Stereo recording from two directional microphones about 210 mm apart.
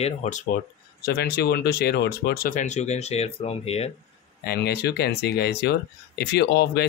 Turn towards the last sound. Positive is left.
turn(degrees=50)  # may be behind; listen again after turning